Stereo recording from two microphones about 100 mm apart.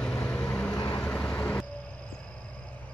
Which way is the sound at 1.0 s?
10° left (ahead or behind).